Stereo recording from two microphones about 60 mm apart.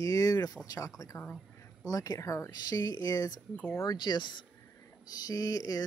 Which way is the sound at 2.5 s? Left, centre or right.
Left.